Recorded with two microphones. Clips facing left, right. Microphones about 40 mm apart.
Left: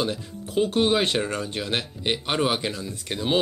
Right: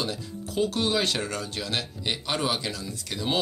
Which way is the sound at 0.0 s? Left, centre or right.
Left.